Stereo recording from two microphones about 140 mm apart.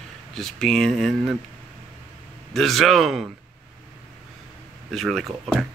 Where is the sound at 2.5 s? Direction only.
Centre (ahead or behind).